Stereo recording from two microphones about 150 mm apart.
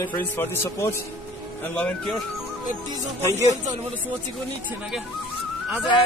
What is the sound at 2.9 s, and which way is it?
Speech, 20° right (ahead or behind).